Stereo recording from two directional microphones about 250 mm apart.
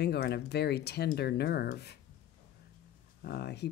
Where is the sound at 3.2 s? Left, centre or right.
Left.